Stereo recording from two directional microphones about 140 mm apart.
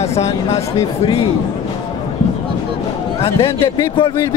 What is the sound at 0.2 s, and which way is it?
Speech, 50° left (ahead or behind).